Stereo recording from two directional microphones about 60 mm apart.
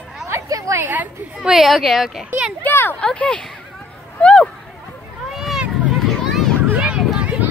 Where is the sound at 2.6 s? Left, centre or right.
Left.